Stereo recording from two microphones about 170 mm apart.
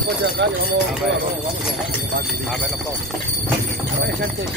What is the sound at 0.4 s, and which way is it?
Speech, 90° right.